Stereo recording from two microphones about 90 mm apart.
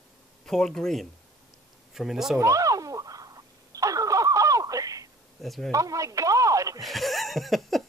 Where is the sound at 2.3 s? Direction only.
35° right (ahead or behind).